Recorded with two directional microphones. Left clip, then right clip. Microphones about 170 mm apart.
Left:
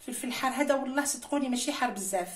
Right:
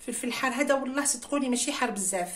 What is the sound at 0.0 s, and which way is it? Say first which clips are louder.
A woman's voice: right 2 dB; 35° right (ahead or behind).